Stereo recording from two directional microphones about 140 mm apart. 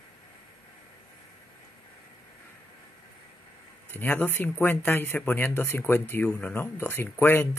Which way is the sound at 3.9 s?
15° left (ahead or behind).